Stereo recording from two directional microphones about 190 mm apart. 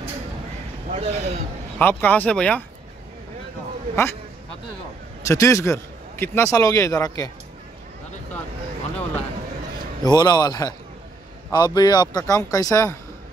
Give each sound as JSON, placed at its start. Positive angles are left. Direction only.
{"t": 0.8, "sound": "speech", "side_deg": -35}
{"t": 1.8, "sound": "a man's voice", "side_deg": 10}
{"t": 3.9, "sound": "a man's voice", "side_deg": 10}
{"t": 5.2, "sound": "a man's voice", "side_deg": 15}
{"t": 10.0, "sound": "speech", "side_deg": 20}